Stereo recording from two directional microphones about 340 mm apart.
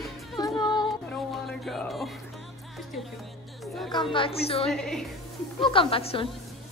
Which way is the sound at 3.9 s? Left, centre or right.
Centre.